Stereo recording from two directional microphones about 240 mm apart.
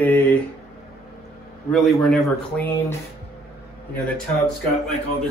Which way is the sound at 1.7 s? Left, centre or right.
Centre.